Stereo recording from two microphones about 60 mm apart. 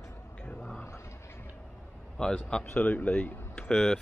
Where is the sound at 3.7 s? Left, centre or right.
Centre.